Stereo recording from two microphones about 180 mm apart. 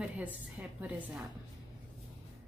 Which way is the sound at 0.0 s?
10° right (ahead or behind).